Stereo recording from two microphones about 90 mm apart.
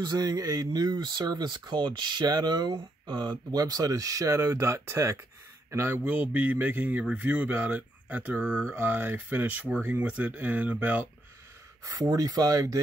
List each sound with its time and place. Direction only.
0.0 s speech: 50° right (ahead or behind); by 5.9 s 30° right (ahead or behind)
6.0 s speech: 15° right (ahead or behind)
11.8 s speech: 40° right (ahead or behind)